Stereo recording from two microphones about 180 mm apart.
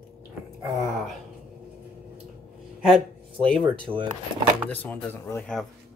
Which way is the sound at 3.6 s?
25° right (ahead or behind).